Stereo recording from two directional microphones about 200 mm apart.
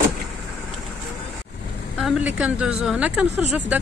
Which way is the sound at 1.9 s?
5° right (ahead or behind).